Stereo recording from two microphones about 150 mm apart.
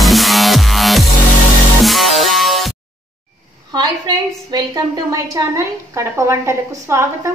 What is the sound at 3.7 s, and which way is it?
A woman's voice, 25° right (ahead or behind).